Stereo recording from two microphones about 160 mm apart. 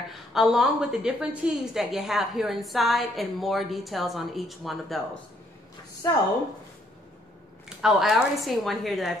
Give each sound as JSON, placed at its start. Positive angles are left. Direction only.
{"t": 0.1, "sound": "a woman's voice", "side_deg": 0}
{"t": 6.0, "sound": "a woman's voice", "side_deg": 20}
{"t": 7.8, "sound": "a woman's voice", "side_deg": 0}